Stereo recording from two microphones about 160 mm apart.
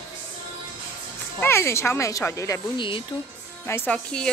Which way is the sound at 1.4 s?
15° left (ahead or behind).